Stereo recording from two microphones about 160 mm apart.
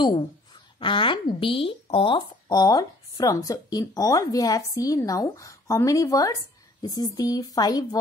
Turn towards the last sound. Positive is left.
turn(degrees=25)  # may be behind; listen again after turning